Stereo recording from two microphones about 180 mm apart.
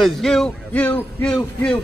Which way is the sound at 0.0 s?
Centre (ahead or behind).